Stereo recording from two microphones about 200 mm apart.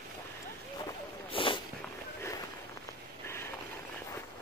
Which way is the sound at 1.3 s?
25° left (ahead or behind).